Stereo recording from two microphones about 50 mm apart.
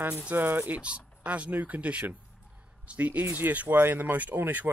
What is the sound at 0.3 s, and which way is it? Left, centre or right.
Speech, right.